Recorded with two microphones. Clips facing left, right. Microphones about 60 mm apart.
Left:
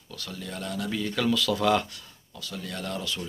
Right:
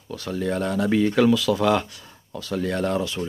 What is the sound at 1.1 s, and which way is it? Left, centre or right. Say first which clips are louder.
Speech: right 7 dB; centre.